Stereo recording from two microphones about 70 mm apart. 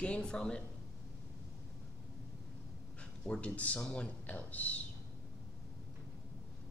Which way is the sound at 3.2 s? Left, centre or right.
Centre.